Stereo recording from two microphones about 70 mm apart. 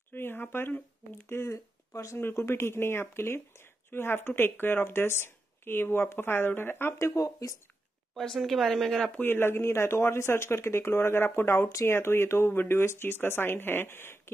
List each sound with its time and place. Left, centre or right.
0.1 s speech: left
7.0 s speech: left
8.1 s speech: centre
9.2 s speech: left